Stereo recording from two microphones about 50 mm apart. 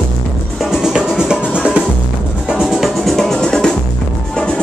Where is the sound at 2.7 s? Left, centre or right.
Centre.